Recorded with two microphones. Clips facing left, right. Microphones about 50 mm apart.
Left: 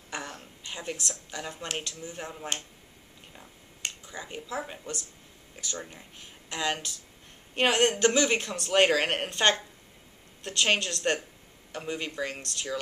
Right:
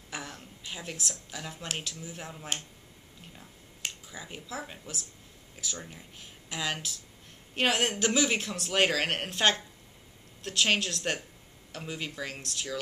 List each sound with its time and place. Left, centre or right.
0.1 s a sound: centre
0.7 s speech: centre
3.8 s speech: centre